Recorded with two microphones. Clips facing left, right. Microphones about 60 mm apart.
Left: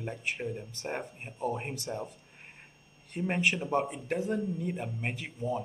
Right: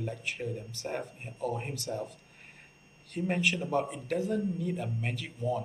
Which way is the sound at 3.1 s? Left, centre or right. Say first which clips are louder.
Even; left.